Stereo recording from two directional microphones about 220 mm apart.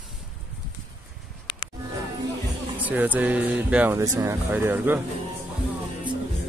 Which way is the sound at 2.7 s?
10° right (ahead or behind).